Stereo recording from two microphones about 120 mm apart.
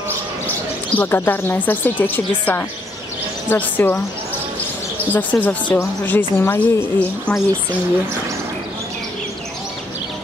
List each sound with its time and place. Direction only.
0.9 s speech: 20° left (ahead or behind)
5.1 s a woman's voice: 10° left (ahead or behind)